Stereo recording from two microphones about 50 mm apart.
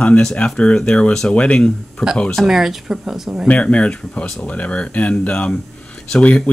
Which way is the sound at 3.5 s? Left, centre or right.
Left.